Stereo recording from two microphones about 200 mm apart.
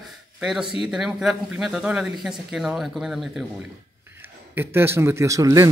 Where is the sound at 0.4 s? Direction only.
5° right (ahead or behind).